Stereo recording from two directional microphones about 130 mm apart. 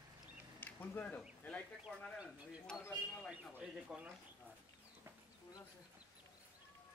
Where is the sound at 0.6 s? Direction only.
15° left (ahead or behind).